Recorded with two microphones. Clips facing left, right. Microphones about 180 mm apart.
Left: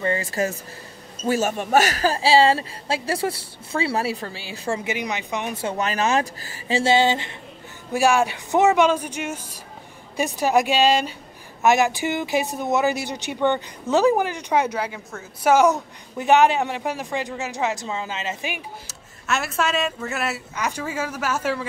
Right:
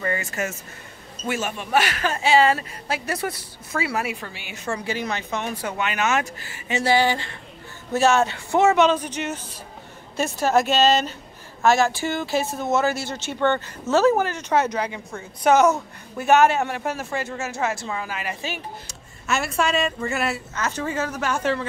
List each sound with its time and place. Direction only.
0.0 s a woman's voice: 30° left (ahead or behind)
5.8 s speech: 35° left (ahead or behind)
6.8 s a woman's voice: 25° left (ahead or behind)
18.9 s speech: centre (ahead or behind)